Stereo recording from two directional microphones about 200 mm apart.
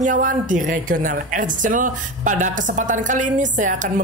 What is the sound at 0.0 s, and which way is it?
A woman's voice, 40° right (ahead or behind).